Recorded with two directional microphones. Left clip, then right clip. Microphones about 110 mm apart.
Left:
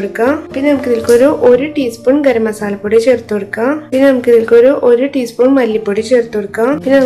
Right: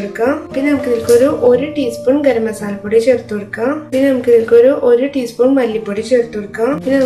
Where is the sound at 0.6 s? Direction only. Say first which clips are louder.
Left 3 dB; 15° left (ahead or behind).